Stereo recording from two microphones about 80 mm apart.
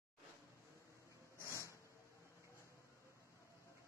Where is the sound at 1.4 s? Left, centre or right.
Left.